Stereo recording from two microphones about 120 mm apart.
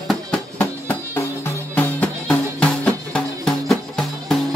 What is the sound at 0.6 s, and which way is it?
Music, 25° left (ahead or behind).